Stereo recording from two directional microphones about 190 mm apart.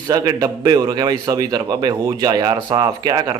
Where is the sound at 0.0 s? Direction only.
20° right (ahead or behind).